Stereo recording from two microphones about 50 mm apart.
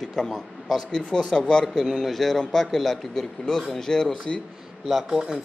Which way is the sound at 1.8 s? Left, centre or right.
Centre.